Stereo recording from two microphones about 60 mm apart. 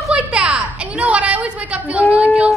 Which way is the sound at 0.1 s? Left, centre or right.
Centre.